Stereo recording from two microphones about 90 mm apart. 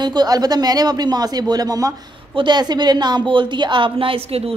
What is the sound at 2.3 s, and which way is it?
A woman's voice, 60° right (ahead or behind).